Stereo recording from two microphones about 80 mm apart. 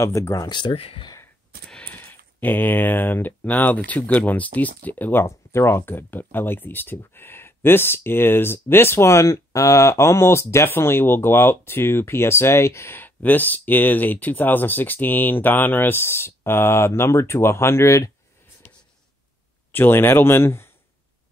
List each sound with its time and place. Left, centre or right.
0.0 s speech: left
0.5 s speech: left
1.7 s a sound: centre
2.0 s speech: left
5.2 s speech: left
19.7 s speech: left